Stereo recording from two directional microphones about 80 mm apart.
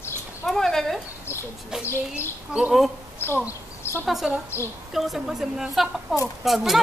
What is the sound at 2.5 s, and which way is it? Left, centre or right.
Speech, centre.